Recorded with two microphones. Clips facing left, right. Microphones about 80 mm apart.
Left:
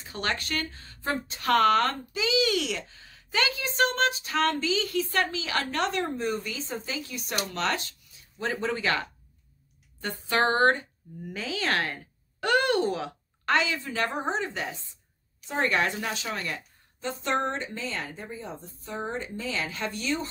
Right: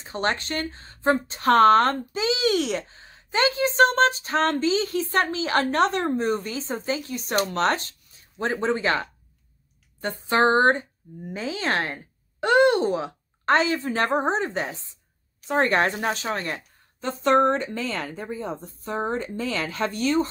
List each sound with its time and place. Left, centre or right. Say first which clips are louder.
0.0 s speech: right 5 dB; right
10.2 s speech: right 4 dB; right
16.5 s a woman's voice: right 2 dB; right